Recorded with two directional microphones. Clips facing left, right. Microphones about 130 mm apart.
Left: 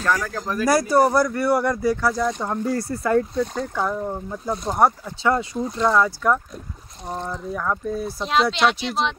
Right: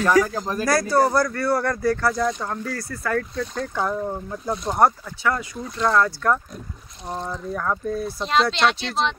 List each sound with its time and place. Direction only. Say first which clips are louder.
0.0 s speech: right 5 dB; 10° right (ahead or behind)
0.7 s speech: left 2 dB; 15° left (ahead or behind)
3.3 s speech: left 2 dB; 5° left (ahead or behind)
5.0 s speech: left 3 dB; 25° left (ahead or behind)
5.8 s speech: even; 10° left (ahead or behind)
7.1 s speech: even; 5° right (ahead or behind)